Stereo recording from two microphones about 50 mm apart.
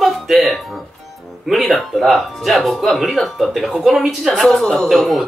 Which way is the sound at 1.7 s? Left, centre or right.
Centre.